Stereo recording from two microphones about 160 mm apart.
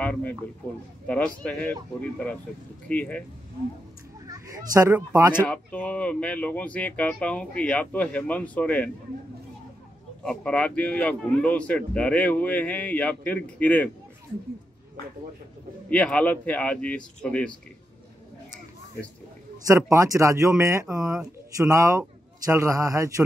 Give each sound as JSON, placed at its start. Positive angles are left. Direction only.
{"t": 0.0, "sound": "speech", "side_deg": 10}
{"t": 4.3, "sound": "speech", "side_deg": -20}
{"t": 5.4, "sound": "speech", "side_deg": 10}
{"t": 10.2, "sound": "speech", "side_deg": 5}
{"t": 15.9, "sound": "speech", "side_deg": 5}
{"t": 19.7, "sound": "a man's voice", "side_deg": -20}